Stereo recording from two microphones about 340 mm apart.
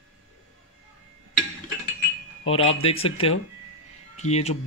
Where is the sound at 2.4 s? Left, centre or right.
Centre.